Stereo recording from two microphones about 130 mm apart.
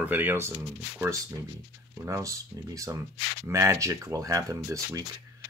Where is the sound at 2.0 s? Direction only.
25° right (ahead or behind).